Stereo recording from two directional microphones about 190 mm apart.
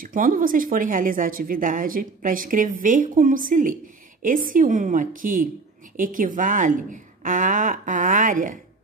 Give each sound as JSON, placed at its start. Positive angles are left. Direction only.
{"t": 0.0, "sound": "a woman's voice", "side_deg": -45}